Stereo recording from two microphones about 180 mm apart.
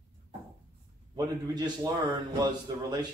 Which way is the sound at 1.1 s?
25° right (ahead or behind).